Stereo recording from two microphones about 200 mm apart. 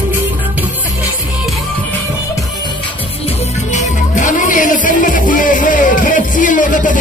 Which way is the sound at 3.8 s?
40° left (ahead or behind).